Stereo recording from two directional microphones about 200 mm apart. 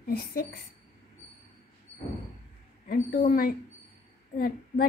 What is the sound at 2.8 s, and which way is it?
A woman's voice, 40° left (ahead or behind).